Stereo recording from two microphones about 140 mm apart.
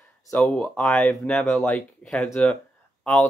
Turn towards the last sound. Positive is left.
turn(degrees=5)  # may be behind; listen again after turning